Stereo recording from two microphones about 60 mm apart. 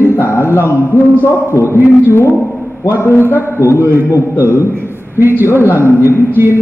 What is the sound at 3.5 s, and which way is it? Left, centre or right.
Speech, left.